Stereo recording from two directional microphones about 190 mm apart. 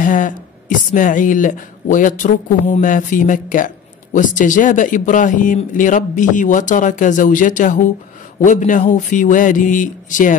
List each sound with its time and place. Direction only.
0.0 s speech: 45° left (ahead or behind)